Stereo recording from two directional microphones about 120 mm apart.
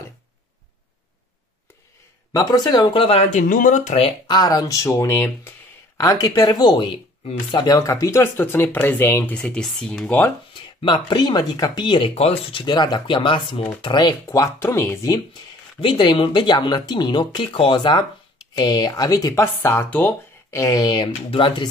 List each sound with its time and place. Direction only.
2.3 s speech: 35° left (ahead or behind); by 3.3 s 50° left (ahead or behind)
3.3 s speech: 90° left
4.3 s speech: 35° left (ahead or behind)
5.9 s speech: 30° left (ahead or behind)
10.5 s speech: 40° left (ahead or behind)
12.6 s speech: 40° left (ahead or behind); by 15.1 s 20° left (ahead or behind)
15.8 s speech: 45° left (ahead or behind)